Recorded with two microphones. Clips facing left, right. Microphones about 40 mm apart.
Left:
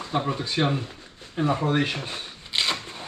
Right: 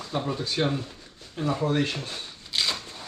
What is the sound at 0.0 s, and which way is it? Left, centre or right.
Speech, left.